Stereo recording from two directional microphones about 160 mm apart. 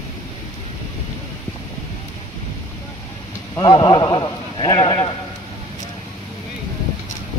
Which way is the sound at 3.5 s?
30° left (ahead or behind).